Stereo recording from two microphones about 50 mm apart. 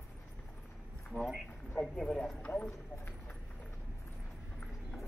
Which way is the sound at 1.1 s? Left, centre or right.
Centre.